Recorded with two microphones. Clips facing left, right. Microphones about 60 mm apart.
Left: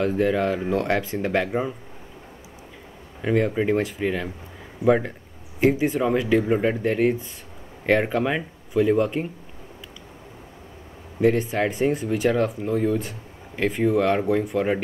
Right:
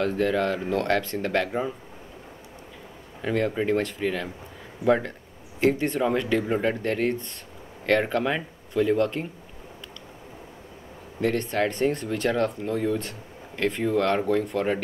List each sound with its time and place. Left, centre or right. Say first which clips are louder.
0.0 s speech: left 2 dB; centre
3.2 s speech: left 3 dB; centre
11.1 s speech: left 4 dB; centre